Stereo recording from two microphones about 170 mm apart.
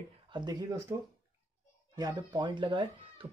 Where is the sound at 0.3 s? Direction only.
25° right (ahead or behind).